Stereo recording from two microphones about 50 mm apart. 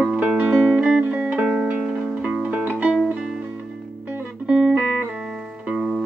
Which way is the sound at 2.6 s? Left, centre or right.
Right.